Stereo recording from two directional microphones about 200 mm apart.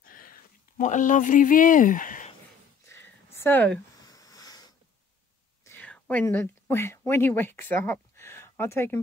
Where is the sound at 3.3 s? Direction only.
10° left (ahead or behind).